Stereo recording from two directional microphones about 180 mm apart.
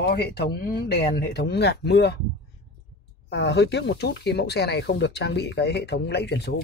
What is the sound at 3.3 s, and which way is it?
Speech, 70° left (ahead or behind).